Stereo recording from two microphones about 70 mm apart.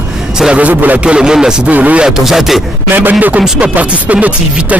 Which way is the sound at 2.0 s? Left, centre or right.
Centre.